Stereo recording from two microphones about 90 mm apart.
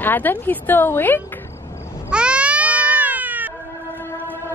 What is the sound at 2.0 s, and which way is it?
Cat, 10° right (ahead or behind).